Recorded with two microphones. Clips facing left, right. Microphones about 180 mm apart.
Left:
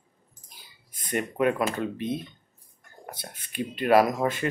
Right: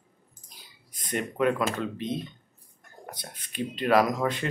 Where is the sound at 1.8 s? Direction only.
55° left (ahead or behind).